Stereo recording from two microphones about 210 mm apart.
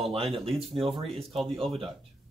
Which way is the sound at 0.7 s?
Centre (ahead or behind).